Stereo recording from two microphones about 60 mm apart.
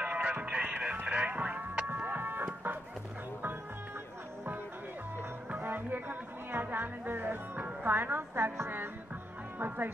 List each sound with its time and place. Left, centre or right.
0.0 s music: right
1.9 s chicken: right
5.5 s music: right